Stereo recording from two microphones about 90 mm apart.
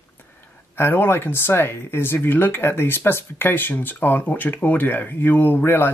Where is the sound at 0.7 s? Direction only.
25° left (ahead or behind).